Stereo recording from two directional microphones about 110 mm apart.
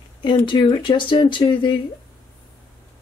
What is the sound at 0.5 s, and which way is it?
Speech, 45° left (ahead or behind).